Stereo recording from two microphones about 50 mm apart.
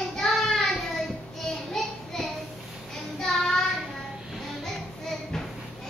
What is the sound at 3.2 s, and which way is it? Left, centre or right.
Child singing, centre.